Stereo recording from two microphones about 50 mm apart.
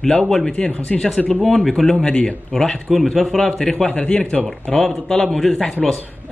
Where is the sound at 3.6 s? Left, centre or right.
Centre.